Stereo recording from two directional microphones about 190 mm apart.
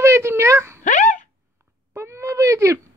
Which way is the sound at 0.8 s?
40° left (ahead or behind).